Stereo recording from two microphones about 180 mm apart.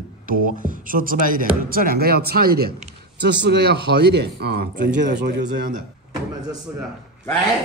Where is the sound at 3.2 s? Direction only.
70° right (ahead or behind).